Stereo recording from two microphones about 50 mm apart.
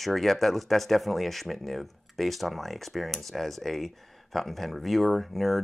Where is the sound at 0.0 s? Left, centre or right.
Centre.